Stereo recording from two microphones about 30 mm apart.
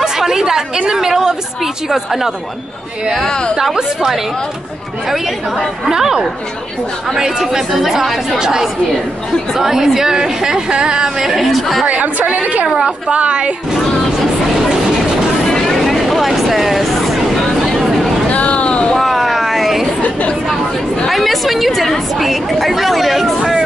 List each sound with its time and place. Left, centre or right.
0.0 s a woman's voice: centre
5.9 s a woman's voice: centre
10.7 s a woman's voice: right
11.2 s speech: centre
12.3 s a woman's voice: right
15.6 s vehicle: centre
17.7 s a sound: centre
18.3 s a sound: left
18.9 s a sound: centre
21.1 s speech: centre